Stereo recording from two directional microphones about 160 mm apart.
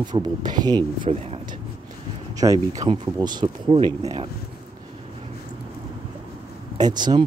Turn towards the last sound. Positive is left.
turn(degrees=-25)  # may be behind; listen again after turning